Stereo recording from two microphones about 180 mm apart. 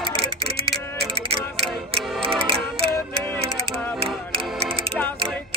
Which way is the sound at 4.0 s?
30° right (ahead or behind).